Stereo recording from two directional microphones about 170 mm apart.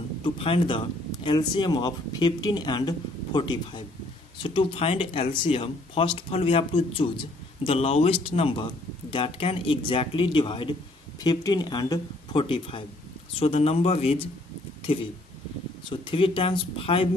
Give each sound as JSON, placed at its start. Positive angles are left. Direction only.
{"t": 0.2, "sound": "speech", "side_deg": 30}
{"t": 15.9, "sound": "speech", "side_deg": 30}